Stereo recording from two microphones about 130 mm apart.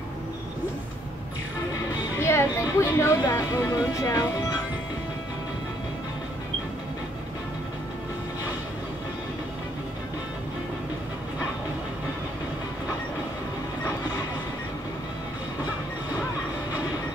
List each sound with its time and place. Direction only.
2.2 s speech: 20° left (ahead or behind)